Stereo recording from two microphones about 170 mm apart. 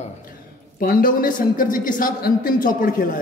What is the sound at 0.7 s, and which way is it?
A man's voice, 55° left (ahead or behind).